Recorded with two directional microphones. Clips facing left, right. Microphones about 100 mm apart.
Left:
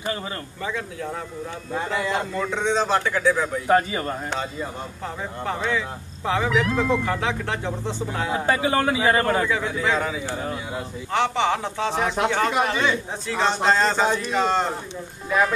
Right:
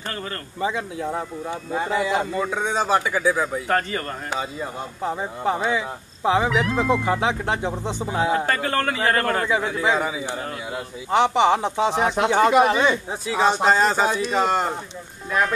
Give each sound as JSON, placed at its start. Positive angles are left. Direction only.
{"t": 0.6, "sound": "speech", "side_deg": -20}
{"t": 1.7, "sound": "speech", "side_deg": -5}
{"t": 3.6, "sound": "a man's voice", "side_deg": 10}
{"t": 4.3, "sound": "speech", "side_deg": -5}
{"t": 5.0, "sound": "speech", "side_deg": -20}
{"t": 6.5, "sound": "speech", "side_deg": -5}
{"t": 7.1, "sound": "speech", "side_deg": -20}
{"t": 8.3, "sound": "a man's voice", "side_deg": 10}
{"t": 9.5, "sound": "speech", "side_deg": -15}
{"t": 15.2, "sound": "speech", "side_deg": 0}